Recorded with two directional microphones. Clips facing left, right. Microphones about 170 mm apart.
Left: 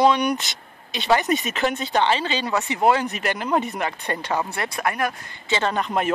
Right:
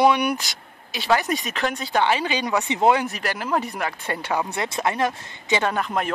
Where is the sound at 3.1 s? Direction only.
Centre (ahead or behind).